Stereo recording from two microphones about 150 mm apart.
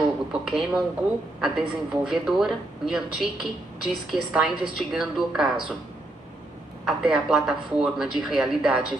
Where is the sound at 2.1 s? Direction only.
Centre (ahead or behind).